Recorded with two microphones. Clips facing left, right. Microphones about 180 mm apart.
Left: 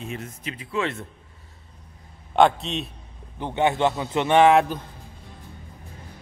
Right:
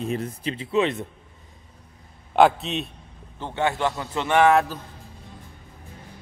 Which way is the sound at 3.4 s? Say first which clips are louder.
Left 3 dB; 20° left (ahead or behind).